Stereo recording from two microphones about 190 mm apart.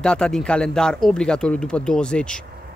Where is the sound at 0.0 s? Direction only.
5° left (ahead or behind).